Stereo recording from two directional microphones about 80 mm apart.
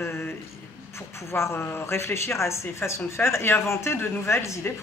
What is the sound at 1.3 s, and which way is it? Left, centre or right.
Speech, left.